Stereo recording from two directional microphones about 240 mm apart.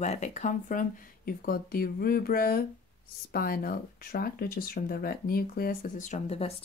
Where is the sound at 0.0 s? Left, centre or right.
Left.